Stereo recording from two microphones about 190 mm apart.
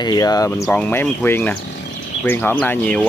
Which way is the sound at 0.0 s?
20° left (ahead or behind).